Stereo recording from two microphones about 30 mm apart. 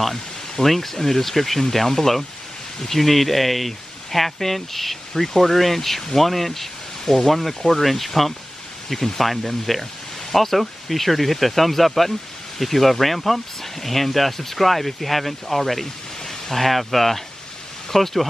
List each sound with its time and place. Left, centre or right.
0.0 s speech: centre